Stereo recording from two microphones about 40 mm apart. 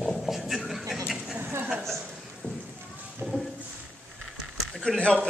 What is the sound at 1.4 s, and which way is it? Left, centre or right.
Chuckle, right.